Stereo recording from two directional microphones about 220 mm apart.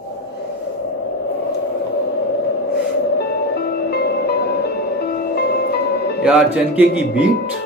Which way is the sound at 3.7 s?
45° left (ahead or behind).